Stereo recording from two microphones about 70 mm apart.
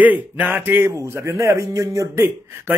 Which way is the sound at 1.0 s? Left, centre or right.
Right.